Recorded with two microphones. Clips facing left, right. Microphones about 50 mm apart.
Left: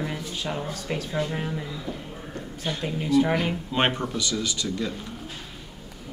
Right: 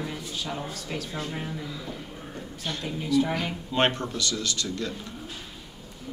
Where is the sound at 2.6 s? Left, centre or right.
Left.